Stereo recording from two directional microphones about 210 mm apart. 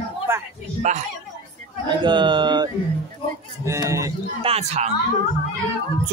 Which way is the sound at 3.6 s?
15° right (ahead or behind).